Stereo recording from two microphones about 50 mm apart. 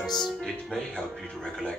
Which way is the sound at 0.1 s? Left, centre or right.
Centre.